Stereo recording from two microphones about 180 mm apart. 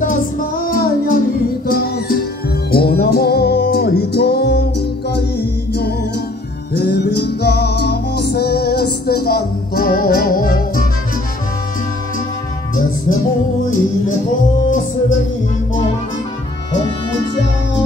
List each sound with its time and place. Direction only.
0.0 s music: 50° left (ahead or behind)
6.8 s music: 65° left (ahead or behind)